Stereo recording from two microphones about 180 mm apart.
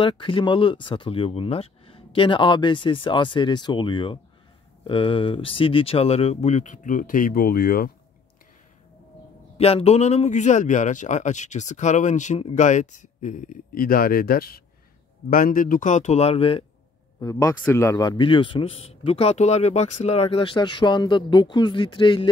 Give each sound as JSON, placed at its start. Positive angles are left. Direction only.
{"t": 0.0, "sound": "speech", "side_deg": 30}
{"t": 9.6, "sound": "a man's voice", "side_deg": 35}
{"t": 17.2, "sound": "speech", "side_deg": 20}